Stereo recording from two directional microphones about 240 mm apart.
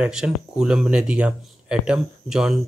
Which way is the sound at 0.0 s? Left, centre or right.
Centre.